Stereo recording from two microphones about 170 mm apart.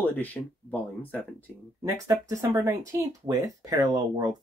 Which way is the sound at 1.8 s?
20° right (ahead or behind).